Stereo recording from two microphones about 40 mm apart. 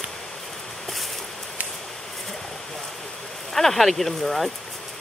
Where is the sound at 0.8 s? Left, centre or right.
Centre.